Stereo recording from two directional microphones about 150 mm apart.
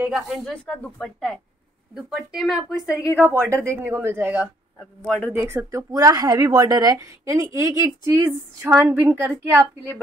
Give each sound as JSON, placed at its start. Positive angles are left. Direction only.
{"t": 0.0, "sound": "speech", "side_deg": -5}
{"t": 3.2, "sound": "a woman's voice", "side_deg": -15}
{"t": 4.7, "sound": "speech", "side_deg": 5}
{"t": 5.2, "sound": "speech", "side_deg": -15}